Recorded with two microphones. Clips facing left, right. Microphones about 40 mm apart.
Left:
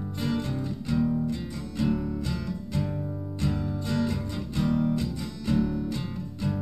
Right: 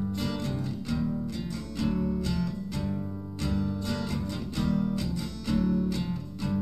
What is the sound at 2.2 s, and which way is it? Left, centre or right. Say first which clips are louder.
Music: right 1 dB; left.